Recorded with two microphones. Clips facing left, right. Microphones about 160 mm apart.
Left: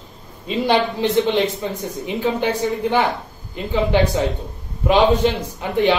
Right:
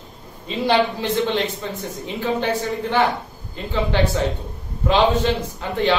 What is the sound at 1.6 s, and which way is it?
A man's voice, 15° left (ahead or behind).